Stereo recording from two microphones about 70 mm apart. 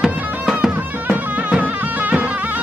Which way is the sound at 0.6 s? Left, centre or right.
Right.